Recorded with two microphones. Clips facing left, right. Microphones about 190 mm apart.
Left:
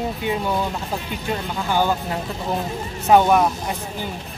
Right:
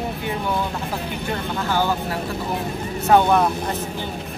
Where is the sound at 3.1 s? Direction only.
15° left (ahead or behind).